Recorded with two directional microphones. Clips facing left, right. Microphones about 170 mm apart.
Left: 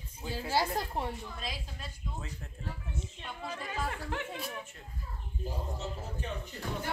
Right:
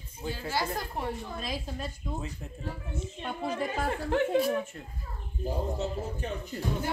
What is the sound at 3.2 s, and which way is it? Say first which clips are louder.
Speech: right 10 dB; 60° right (ahead or behind).